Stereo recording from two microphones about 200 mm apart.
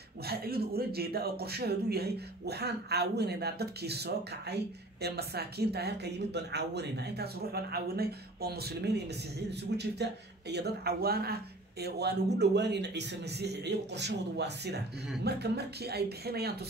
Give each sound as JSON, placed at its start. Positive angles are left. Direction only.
{"t": 0.2, "sound": "a man's voice", "side_deg": -50}